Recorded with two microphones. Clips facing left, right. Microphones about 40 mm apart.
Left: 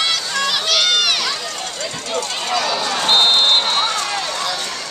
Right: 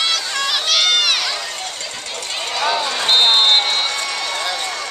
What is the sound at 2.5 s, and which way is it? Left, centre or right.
Run, centre.